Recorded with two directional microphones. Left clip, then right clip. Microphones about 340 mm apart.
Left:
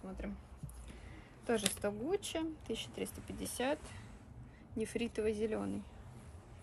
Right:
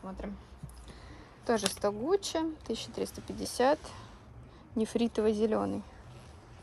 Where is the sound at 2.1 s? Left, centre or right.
Right.